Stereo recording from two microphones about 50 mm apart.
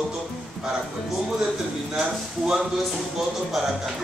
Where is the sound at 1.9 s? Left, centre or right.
Centre.